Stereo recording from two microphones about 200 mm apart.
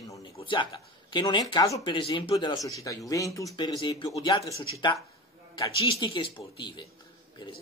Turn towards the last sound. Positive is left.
turn(degrees=25)  # may be behind; listen again after turning